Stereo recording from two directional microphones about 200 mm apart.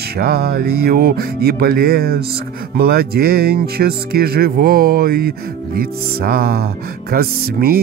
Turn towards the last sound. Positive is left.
turn(degrees=-50)  # may be behind; listen again after turning